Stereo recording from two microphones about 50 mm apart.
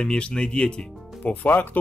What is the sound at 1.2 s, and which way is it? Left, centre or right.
Speech, left.